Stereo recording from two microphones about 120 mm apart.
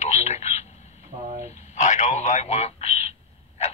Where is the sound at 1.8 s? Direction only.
75° left (ahead or behind).